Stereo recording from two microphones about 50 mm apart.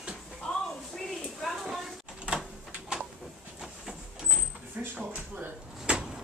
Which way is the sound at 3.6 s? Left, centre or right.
Centre.